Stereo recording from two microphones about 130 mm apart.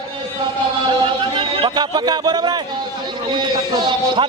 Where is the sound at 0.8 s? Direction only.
40° right (ahead or behind).